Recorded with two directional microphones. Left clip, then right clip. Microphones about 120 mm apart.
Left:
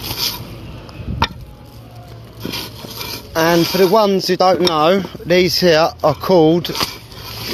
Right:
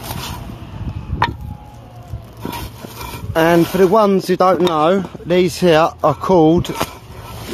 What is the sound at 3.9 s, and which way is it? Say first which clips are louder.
Speech: even; 50° right (ahead or behind).